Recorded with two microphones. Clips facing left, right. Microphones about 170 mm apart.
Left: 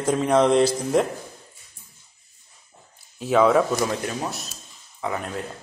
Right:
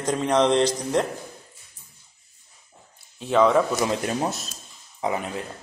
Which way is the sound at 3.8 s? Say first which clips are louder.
Right 2 dB; 30° right (ahead or behind).